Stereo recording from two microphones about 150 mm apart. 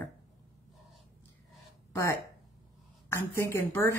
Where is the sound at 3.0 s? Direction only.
15° left (ahead or behind).